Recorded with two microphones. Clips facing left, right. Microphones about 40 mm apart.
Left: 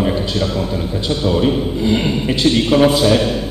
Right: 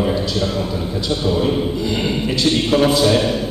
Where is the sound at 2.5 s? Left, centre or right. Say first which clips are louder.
Left 3 dB; centre.